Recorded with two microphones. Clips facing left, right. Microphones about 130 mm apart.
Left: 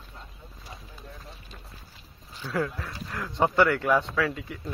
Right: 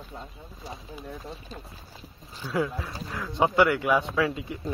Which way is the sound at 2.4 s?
10° right (ahead or behind).